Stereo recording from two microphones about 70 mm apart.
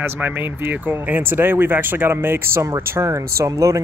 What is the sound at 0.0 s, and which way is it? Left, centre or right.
Speech, right.